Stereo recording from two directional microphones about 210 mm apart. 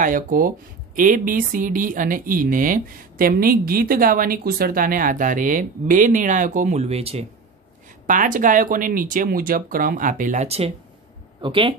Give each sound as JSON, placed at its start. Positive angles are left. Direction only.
{"t": 0.0, "sound": "a woman's voice", "side_deg": -40}
{"t": 8.1, "sound": "a woman's voice", "side_deg": -40}